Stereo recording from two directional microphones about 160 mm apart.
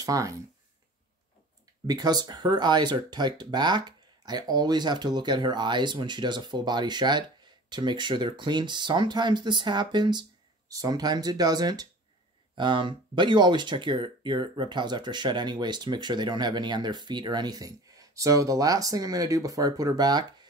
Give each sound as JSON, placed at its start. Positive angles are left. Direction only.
{"t": 0.0, "sound": "speech", "side_deg": -20}
{"t": 1.9, "sound": "speech", "side_deg": -25}